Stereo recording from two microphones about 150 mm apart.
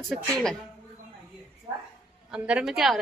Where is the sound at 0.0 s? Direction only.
5° left (ahead or behind).